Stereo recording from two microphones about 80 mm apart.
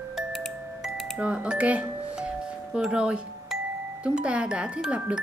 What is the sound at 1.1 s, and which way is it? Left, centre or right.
Speech, centre.